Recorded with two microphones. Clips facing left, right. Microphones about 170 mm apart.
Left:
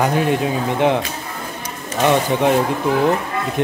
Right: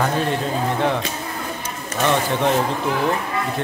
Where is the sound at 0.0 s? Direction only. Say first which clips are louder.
Left 4 dB; 15° left (ahead or behind).